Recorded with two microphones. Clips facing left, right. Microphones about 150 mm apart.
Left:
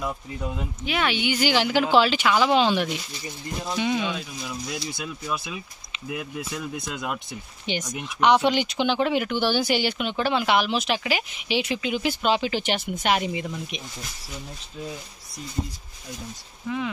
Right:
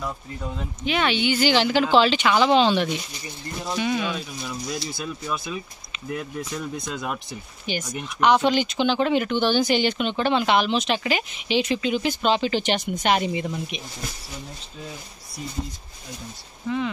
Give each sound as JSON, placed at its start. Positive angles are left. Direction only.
{"t": 0.0, "sound": "speech", "side_deg": 10}
{"t": 4.1, "sound": "speech", "side_deg": 5}
{"t": 7.6, "sound": "speech", "side_deg": 20}
{"t": 15.6, "sound": "speech", "side_deg": 0}